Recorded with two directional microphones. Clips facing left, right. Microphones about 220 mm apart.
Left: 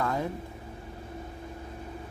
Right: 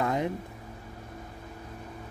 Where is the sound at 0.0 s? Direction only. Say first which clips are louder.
Right 2 dB; 20° right (ahead or behind).